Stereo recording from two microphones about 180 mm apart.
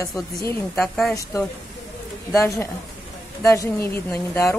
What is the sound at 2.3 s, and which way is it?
Speech, 15° left (ahead or behind).